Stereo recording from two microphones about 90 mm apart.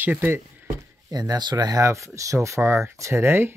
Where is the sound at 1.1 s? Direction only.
45° right (ahead or behind); by 3.5 s 25° right (ahead or behind).